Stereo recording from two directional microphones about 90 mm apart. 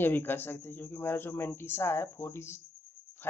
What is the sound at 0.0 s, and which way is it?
Speech, 25° left (ahead or behind).